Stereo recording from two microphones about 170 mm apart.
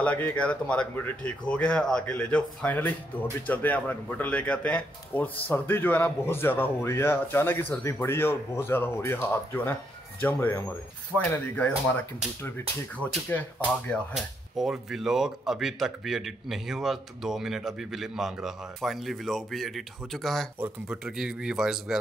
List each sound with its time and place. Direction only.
0.0 s speech: 10° left (ahead or behind)